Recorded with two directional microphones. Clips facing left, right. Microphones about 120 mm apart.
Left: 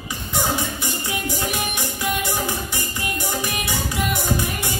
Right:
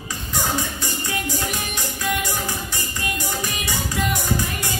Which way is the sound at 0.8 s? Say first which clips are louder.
Left 1 dB; 15° left (ahead or behind).